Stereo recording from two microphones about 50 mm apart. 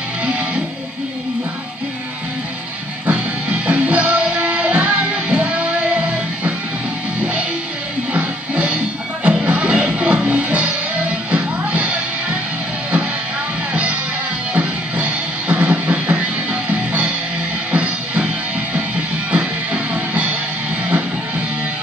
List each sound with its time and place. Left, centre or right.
3.1 s music: right
8.1 s music: right
14.5 s music: right